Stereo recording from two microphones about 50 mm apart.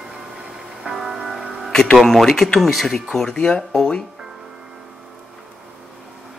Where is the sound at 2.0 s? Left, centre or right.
Centre.